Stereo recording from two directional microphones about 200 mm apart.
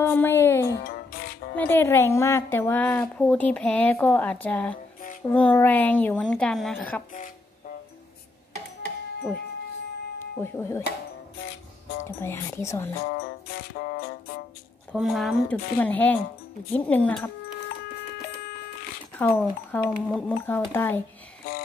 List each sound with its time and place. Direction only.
0.0 s music: 10° left (ahead or behind)
0.8 s music: 50° left (ahead or behind)
1.6 s a woman's voice: 10° left (ahead or behind)
10.1 s speech: 10° left (ahead or behind)
12.0 s a woman's voice: 15° left (ahead or behind)
13.2 s music: 55° left (ahead or behind)
14.9 s a woman's voice: centre (ahead or behind)
19.1 s a woman's voice: 10° left (ahead or behind)